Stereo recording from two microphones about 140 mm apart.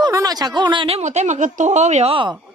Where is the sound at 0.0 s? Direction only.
25° right (ahead or behind); by 2.1 s 55° right (ahead or behind).